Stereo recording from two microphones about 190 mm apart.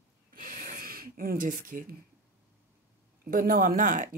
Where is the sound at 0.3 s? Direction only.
45° right (ahead or behind).